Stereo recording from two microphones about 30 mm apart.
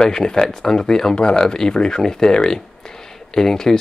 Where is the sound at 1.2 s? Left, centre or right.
Left.